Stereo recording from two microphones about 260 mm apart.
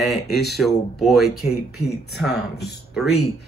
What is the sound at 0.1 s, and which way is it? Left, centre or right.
Speech, centre.